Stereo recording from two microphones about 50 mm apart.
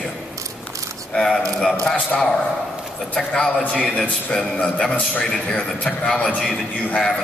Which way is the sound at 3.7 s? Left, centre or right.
Left.